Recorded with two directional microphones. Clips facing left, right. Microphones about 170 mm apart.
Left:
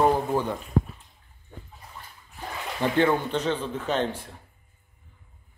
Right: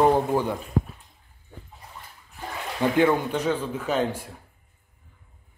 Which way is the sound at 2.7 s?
10° right (ahead or behind).